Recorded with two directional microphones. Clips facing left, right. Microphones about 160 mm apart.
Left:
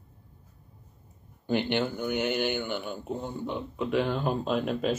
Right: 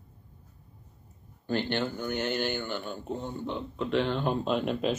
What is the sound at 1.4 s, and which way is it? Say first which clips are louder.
Speech: left 2 dB; 15° left (ahead or behind).